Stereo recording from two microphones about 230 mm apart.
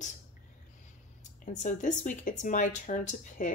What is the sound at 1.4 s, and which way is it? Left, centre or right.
Speech, left.